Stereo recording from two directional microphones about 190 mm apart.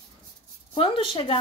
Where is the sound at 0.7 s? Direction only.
30° left (ahead or behind).